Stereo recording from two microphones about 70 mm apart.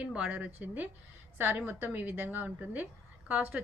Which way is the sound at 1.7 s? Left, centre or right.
Right.